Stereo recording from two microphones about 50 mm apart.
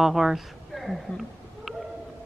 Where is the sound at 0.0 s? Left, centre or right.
Centre.